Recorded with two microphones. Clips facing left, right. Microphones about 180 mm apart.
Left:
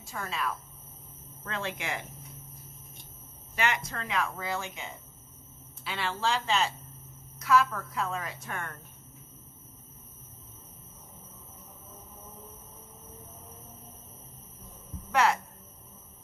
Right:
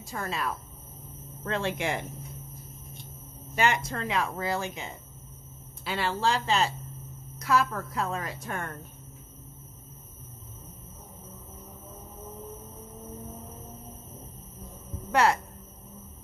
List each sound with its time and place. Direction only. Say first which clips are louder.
0.0 s speech: right 2 dB; 40° right (ahead or behind)
3.5 s speech: right 4 dB; 30° right (ahead or behind)
15.0 s a woman's voice: right 2 dB; 35° right (ahead or behind)